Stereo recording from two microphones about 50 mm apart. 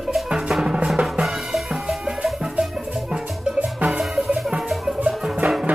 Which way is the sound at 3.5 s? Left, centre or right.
Right.